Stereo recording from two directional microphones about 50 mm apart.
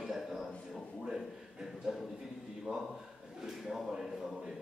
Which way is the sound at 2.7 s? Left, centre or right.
Right.